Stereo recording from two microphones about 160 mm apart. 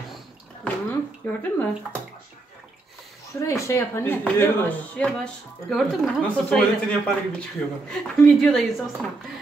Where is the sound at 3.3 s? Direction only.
20° left (ahead or behind); by 8.8 s centre (ahead or behind).